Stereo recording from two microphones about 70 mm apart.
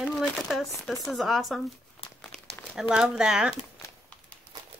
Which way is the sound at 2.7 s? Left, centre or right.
Centre.